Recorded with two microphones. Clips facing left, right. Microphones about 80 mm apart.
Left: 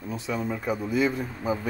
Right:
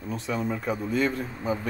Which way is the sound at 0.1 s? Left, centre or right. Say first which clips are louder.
Right 1 dB; centre.